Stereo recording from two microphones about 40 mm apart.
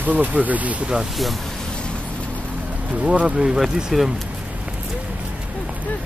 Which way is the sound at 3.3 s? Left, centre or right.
Centre.